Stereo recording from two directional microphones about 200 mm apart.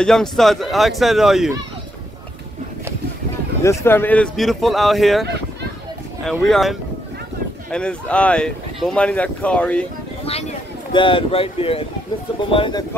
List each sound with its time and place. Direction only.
0.0 s speech: 5° left (ahead or behind)
3.6 s speech: 10° left (ahead or behind)
5.2 s a sound: 55° right (ahead or behind)
6.2 s speech: centre (ahead or behind)
10.9 s speech: 25° left (ahead or behind)